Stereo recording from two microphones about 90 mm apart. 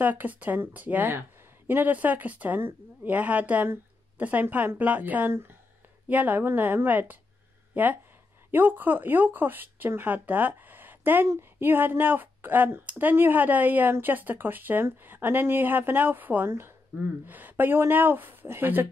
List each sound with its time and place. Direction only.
0.0 s speech: 20° right (ahead or behind)